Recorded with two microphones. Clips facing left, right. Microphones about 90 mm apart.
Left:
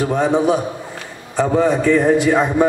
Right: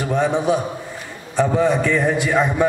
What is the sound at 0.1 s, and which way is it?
A man's voice, 40° left (ahead or behind).